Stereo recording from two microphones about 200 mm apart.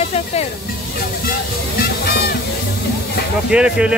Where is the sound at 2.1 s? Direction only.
50° left (ahead or behind).